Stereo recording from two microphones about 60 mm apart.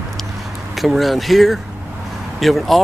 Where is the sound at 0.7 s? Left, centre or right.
Centre.